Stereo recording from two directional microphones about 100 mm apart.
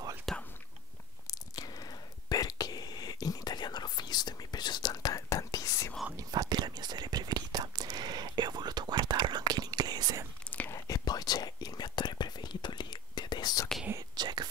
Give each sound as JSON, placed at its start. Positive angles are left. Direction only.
{"t": 0.3, "sound": "whispering", "side_deg": 0}
{"t": 1.5, "sound": "whispering", "side_deg": 40}
{"t": 6.1, "sound": "whispering", "side_deg": -40}
{"t": 10.7, "sound": "whispering", "side_deg": 40}
{"t": 13.9, "sound": "whispering", "side_deg": -45}